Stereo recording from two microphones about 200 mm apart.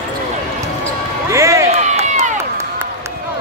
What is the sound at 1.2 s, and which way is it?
Speech, 15° right (ahead or behind).